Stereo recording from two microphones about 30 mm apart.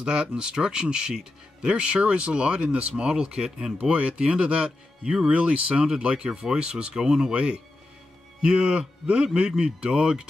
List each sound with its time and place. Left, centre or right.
0.0 s speech: right
1.7 s speech: right
3.9 s speech: right
6.1 s speech: right